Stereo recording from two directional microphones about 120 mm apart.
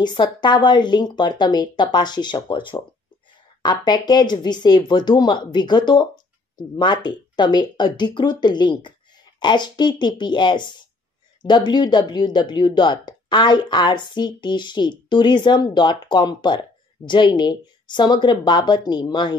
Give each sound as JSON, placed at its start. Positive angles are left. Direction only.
{"t": 0.0, "sound": "speech", "side_deg": 40}